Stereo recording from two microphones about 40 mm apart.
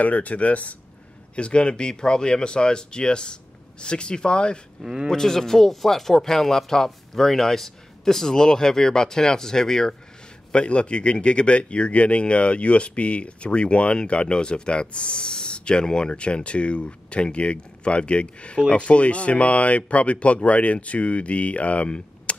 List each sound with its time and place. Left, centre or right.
0.0 s speech: left
1.3 s speech: left
4.8 s speech: centre
5.1 s speech: centre
10.5 s speech: left